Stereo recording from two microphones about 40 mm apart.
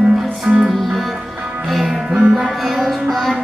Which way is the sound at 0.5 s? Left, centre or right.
Centre.